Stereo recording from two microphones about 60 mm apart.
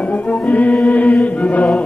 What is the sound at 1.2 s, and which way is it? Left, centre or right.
Chant, left.